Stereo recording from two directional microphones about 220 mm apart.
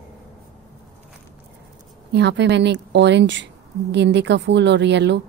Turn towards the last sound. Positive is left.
turn(degrees=-50)  # may be behind; listen again after turning